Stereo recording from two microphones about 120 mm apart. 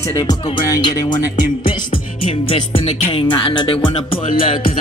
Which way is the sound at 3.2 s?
45° left (ahead or behind).